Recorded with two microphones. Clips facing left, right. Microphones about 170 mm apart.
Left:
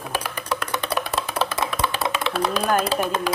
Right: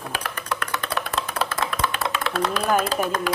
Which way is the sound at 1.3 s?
20° left (ahead or behind).